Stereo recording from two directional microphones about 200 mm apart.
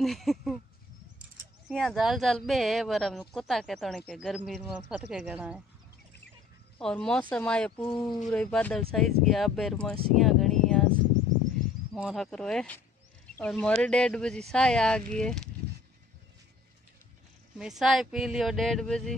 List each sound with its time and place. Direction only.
0.0 s speech: centre (ahead or behind)
1.7 s speech: centre (ahead or behind)
6.8 s speech: 5° left (ahead or behind)
7.7 s speech: 25° left (ahead or behind)
8.3 s speech: 5° left (ahead or behind)
10.1 s a sound: centre (ahead or behind)
11.9 s speech: centre (ahead or behind)
17.6 s speech: centre (ahead or behind)